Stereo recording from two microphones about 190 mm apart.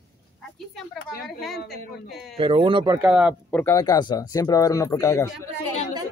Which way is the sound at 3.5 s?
10° left (ahead or behind).